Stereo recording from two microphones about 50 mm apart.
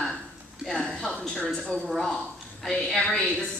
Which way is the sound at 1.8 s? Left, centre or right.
Centre.